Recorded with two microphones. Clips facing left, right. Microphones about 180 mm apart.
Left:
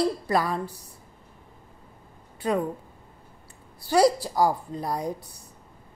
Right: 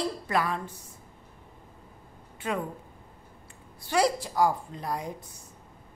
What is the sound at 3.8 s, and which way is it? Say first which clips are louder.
A woman's voice: left 5 dB; 35° left (ahead or behind).